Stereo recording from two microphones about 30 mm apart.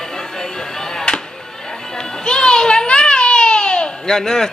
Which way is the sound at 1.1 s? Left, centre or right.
Left.